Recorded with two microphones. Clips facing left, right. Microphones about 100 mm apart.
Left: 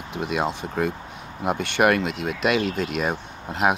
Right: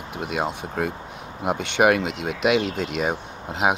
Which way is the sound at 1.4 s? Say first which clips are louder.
Right 1 dB; 15° right (ahead or behind).